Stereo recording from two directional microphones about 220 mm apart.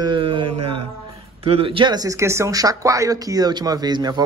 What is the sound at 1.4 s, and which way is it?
Speech, 25° right (ahead or behind).